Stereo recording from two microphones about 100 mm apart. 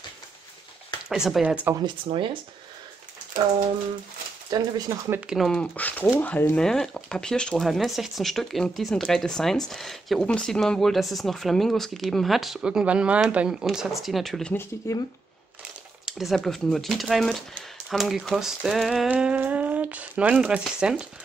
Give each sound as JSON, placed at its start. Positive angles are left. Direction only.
{"t": 1.0, "sound": "speech", "side_deg": -5}
{"t": 2.1, "sound": "speech", "side_deg": -70}
{"t": 4.5, "sound": "speech", "side_deg": -40}
{"t": 5.2, "sound": "speech", "side_deg": -5}
{"t": 5.5, "sound": "speech", "side_deg": 15}
{"t": 6.6, "sound": "speech", "side_deg": 5}
{"t": 14.8, "sound": "speech", "side_deg": 35}
{"t": 16.1, "sound": "speech", "side_deg": 0}